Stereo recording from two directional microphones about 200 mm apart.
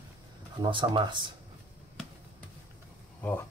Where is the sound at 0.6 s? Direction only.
25° right (ahead or behind).